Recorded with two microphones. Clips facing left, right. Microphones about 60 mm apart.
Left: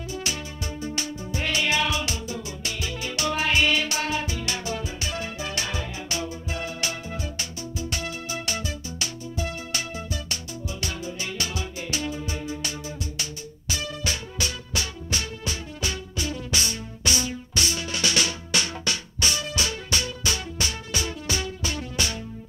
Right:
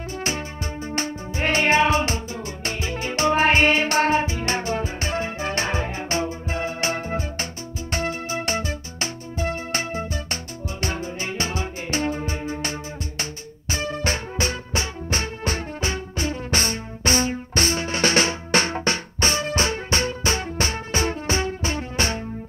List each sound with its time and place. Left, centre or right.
0.1 s music: right